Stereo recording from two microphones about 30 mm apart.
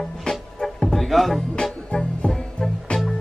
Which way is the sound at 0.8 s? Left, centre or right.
Centre.